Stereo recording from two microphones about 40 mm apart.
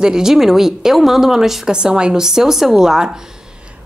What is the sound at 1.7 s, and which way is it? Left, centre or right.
Speech, right.